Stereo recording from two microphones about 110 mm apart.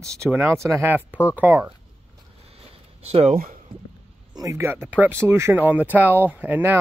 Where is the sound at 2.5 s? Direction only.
65° right (ahead or behind).